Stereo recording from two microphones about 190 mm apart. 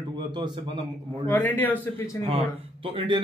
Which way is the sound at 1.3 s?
10° left (ahead or behind).